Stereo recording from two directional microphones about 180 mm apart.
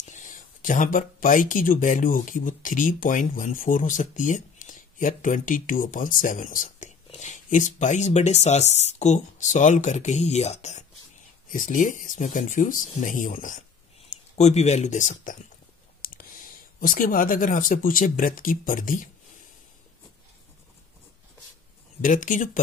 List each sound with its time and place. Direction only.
0.0 s speech: 45° left (ahead or behind)
22.0 s speech: 45° left (ahead or behind)